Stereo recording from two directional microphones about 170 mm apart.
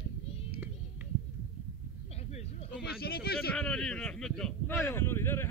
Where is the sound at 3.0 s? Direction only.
65° left (ahead or behind).